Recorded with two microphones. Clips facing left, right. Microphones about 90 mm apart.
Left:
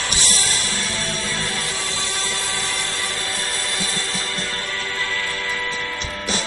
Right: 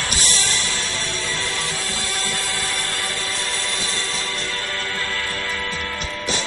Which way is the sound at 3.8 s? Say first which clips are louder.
Even; 30° right (ahead or behind).